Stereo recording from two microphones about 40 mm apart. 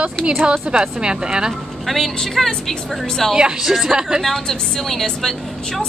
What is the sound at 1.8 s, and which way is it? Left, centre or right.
A woman's voice, centre.